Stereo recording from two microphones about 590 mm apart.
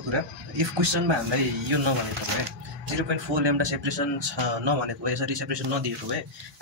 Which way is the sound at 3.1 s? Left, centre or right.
Right.